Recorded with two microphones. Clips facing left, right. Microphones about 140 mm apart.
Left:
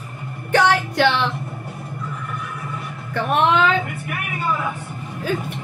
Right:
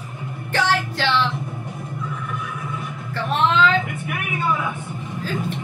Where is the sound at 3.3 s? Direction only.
60° left (ahead or behind).